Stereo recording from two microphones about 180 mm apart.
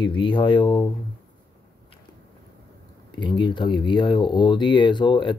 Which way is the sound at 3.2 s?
25° left (ahead or behind).